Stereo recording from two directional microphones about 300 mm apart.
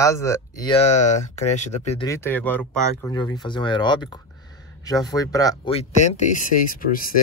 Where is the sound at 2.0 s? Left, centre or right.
Centre.